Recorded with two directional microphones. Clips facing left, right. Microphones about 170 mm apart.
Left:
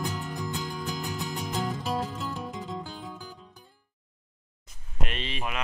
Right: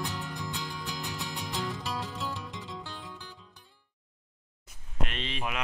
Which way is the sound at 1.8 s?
45° left (ahead or behind).